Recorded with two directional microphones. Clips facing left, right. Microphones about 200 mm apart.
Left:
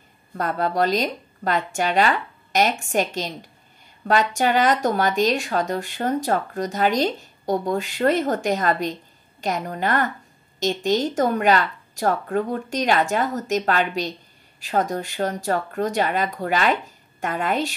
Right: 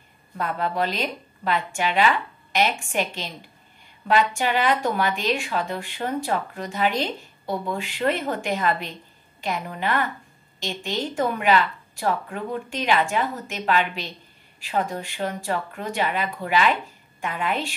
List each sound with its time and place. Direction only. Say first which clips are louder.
0.4 s a woman's voice: left 3 dB; 40° left (ahead or behind)